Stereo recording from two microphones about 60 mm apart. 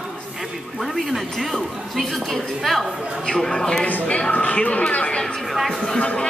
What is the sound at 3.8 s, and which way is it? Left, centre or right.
Chatter, left.